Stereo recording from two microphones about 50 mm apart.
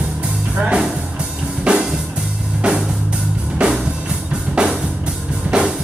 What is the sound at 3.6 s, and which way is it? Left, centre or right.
Music, right.